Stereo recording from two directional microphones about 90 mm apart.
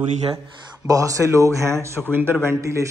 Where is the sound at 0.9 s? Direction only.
40° right (ahead or behind).